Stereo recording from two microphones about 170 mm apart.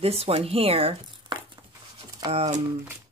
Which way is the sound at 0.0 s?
35° right (ahead or behind).